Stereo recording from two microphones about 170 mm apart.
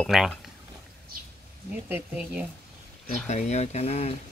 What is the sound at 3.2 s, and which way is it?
Speech, 40° left (ahead or behind).